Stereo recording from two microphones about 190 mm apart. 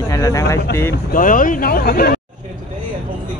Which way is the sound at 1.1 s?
45° left (ahead or behind).